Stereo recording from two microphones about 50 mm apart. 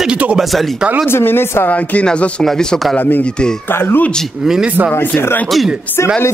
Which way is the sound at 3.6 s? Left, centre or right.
Left.